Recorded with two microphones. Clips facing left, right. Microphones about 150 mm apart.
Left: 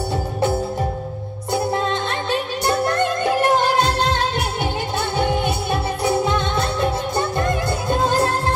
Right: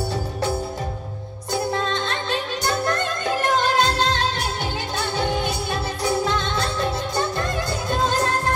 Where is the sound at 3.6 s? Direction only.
60° left (ahead or behind).